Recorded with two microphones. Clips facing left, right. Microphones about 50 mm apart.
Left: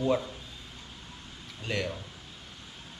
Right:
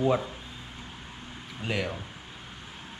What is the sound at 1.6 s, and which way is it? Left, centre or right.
Speech, centre.